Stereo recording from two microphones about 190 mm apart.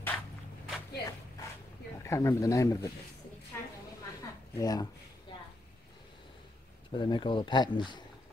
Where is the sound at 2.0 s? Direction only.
15° left (ahead or behind).